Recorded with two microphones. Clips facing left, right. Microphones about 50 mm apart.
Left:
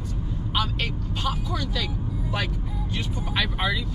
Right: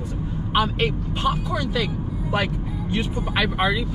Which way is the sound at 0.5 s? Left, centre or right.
Right.